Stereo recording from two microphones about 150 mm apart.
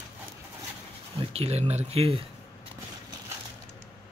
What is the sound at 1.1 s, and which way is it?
Speech, 45° right (ahead or behind).